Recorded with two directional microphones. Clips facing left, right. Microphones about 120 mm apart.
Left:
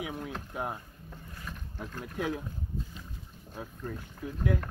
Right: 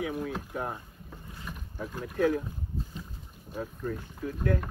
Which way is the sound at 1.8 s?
10° right (ahead or behind).